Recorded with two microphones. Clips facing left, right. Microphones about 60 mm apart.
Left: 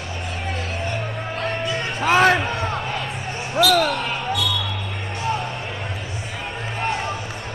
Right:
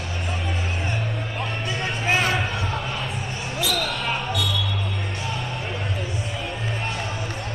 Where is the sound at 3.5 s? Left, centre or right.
Left.